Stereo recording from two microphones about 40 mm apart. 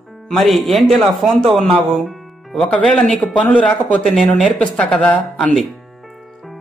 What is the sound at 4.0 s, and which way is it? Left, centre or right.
Speech, centre.